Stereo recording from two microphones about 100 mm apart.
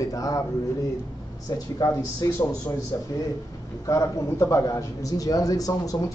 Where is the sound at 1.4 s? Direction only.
35° left (ahead or behind).